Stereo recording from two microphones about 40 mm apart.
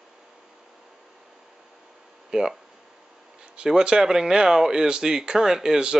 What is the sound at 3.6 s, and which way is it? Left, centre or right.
Speech, centre.